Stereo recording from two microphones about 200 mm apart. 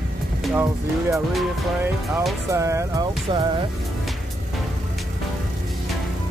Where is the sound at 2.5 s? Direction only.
15° right (ahead or behind).